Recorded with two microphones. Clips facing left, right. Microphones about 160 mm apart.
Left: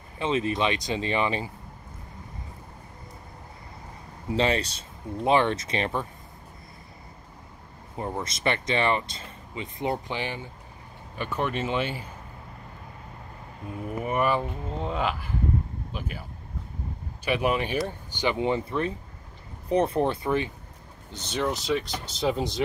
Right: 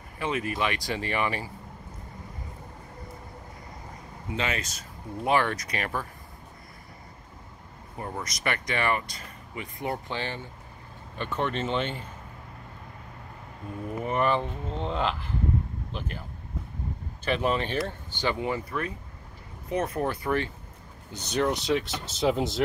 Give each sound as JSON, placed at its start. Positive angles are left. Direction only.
{"t": 0.2, "sound": "speech", "side_deg": 25}
{"t": 4.3, "sound": "speech", "side_deg": 35}
{"t": 8.0, "sound": "speech", "side_deg": 25}
{"t": 14.0, "sound": "speech", "side_deg": 10}
{"t": 21.3, "sound": "speech", "side_deg": 0}